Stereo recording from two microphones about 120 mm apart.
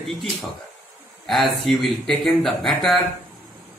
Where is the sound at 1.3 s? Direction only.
Centre (ahead or behind).